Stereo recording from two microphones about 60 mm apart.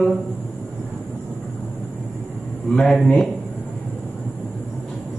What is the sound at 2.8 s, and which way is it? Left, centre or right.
Speech, centre.